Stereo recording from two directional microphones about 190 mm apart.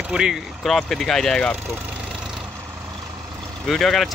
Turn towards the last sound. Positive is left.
turn(degrees=0)  # may be behind; listen again after turning